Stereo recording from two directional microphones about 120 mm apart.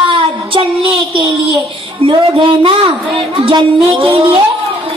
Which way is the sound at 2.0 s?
50° right (ahead or behind).